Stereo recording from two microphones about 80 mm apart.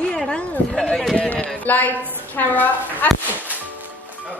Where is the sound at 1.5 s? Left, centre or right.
Left.